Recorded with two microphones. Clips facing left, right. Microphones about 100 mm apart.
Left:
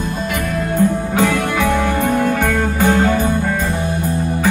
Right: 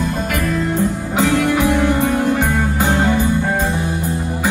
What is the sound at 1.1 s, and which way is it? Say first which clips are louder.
Music: right 1 dB; 20° right (ahead or behind).